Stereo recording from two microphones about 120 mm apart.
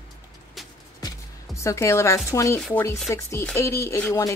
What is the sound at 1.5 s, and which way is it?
A woman's voice, 25° left (ahead or behind).